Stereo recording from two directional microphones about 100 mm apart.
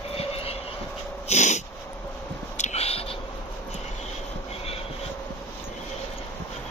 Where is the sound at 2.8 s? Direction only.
85° left.